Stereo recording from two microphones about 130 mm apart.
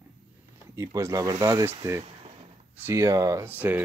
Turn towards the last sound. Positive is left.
turn(degrees=-15)  # may be behind; listen again after turning